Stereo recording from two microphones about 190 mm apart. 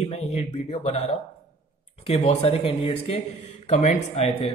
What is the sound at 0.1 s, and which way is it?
Speech, 35° left (ahead or behind).